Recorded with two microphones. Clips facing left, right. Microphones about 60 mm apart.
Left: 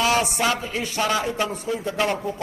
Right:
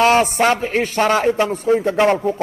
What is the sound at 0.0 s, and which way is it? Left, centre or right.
A man's voice, right.